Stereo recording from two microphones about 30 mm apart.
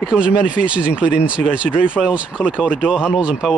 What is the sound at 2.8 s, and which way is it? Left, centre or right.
Speech, right.